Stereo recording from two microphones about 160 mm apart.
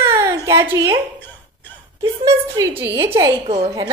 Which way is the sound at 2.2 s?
20° right (ahead or behind).